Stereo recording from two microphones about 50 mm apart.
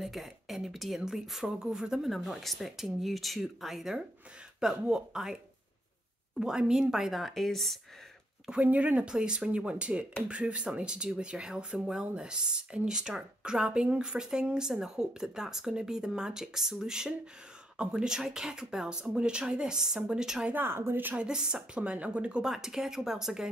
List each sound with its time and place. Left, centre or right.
0.0 s speech: centre
2.0 s speech: centre
6.4 s speech: centre
8.6 s speech: right
9.0 s speech: centre
20.5 s a woman's voice: right
21.2 s speech: centre
22.4 s speech: centre